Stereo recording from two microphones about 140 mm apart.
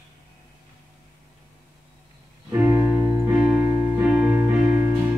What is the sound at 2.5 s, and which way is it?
Music, 15° right (ahead or behind).